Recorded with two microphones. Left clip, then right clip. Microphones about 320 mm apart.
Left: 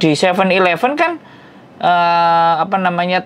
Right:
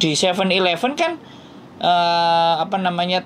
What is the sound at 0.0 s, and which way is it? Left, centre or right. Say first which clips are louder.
Speech: left 5 dB; left.